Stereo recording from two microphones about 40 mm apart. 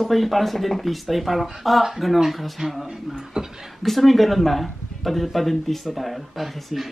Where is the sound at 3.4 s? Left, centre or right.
Centre.